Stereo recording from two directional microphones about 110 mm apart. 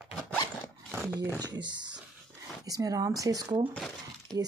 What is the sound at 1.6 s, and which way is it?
Speech, 45° right (ahead or behind).